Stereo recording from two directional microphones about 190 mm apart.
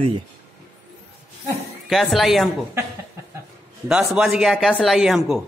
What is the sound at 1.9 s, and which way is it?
Speech, centre (ahead or behind).